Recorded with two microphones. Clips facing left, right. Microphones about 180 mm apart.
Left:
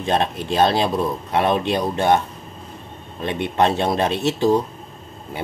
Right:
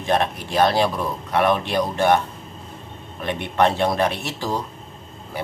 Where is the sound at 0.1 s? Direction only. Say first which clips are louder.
Even; 25° left (ahead or behind).